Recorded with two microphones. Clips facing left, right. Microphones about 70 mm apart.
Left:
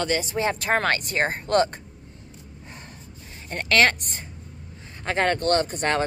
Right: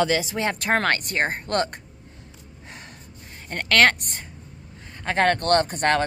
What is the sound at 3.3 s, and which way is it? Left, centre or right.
Speech, right.